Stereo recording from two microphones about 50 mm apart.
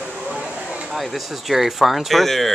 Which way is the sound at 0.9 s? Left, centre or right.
Centre.